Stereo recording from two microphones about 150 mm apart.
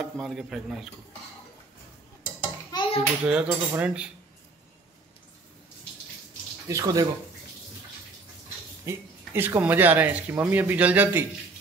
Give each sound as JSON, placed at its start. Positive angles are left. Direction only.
{"t": 0.0, "sound": "speech", "side_deg": 0}
{"t": 2.7, "sound": "clapping", "side_deg": 30}
{"t": 3.3, "sound": "speech", "side_deg": -5}
{"t": 6.7, "sound": "speech", "side_deg": -25}
{"t": 8.8, "sound": "speech", "side_deg": -15}